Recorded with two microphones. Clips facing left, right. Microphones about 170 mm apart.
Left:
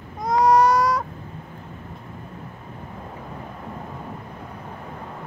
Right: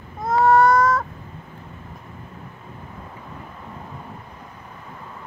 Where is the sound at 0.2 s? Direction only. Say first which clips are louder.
Right 1 dB; 15° left (ahead or behind).